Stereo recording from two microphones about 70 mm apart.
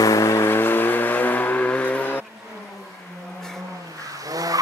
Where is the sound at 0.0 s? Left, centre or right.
Left.